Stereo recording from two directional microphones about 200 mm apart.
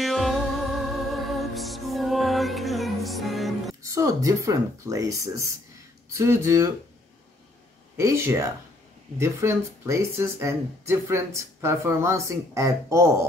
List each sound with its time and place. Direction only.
0.0 s music: centre (ahead or behind)
3.8 s speech: 15° right (ahead or behind)
8.0 s speech: 15° right (ahead or behind)